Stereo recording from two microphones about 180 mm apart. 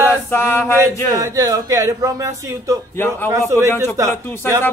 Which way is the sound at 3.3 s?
15° right (ahead or behind).